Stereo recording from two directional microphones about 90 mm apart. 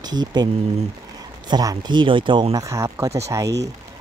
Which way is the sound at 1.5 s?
45° right (ahead or behind).